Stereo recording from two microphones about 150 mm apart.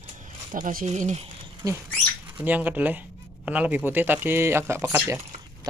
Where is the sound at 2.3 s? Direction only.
10° right (ahead or behind).